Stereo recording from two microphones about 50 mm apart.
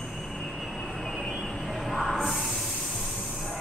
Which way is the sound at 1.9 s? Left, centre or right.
Centre.